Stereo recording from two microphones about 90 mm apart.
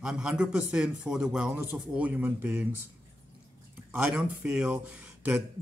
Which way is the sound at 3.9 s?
10° right (ahead or behind).